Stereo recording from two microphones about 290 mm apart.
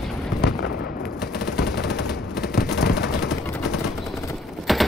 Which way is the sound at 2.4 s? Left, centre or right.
Left.